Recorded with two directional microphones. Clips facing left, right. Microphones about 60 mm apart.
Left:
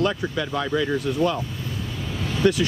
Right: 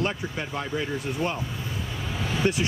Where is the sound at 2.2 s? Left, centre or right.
Centre.